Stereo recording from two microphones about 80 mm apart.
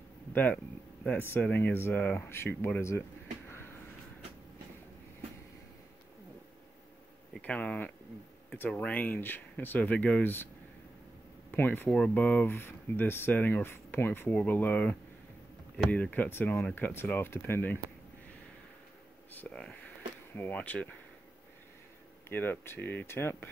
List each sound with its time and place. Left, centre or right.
0.3 s speech: left
3.4 s a sound: left
7.4 s speech: centre
11.5 s speech: left
11.9 s speech: centre
19.5 s speech: centre
22.3 s speech: left